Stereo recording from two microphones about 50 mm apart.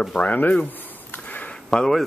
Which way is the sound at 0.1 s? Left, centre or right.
Left.